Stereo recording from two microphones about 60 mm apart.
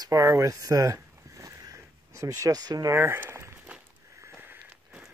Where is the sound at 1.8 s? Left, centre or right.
Right.